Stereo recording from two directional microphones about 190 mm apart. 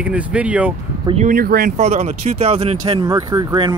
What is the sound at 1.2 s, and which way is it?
Speech, 50° right (ahead or behind).